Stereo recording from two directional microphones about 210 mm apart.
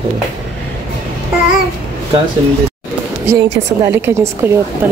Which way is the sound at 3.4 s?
60° right (ahead or behind).